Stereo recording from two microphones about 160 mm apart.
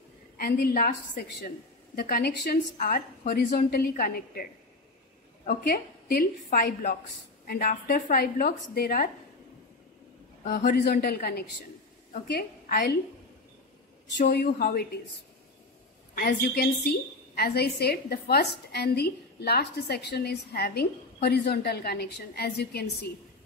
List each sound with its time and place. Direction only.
0.4 s a woman's voice: 70° left (ahead or behind)
10.4 s a woman's voice: 65° left (ahead or behind)
14.2 s a woman's voice: 65° left (ahead or behind)
16.2 s a woman's voice: 80° left